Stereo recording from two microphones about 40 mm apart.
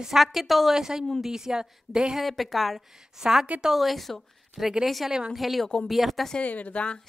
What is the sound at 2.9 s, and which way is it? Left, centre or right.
A woman's voice, centre.